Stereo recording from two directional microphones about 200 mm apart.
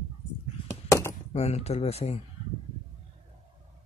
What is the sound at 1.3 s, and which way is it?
Speech, 30° left (ahead or behind).